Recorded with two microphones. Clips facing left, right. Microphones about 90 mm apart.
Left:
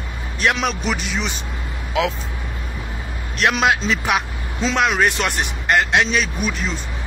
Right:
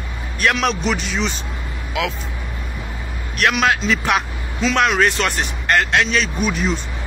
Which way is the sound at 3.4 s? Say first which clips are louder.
Even; 20° left (ahead or behind).